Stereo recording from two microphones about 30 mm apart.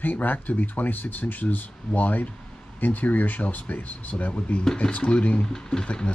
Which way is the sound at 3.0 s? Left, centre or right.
Left.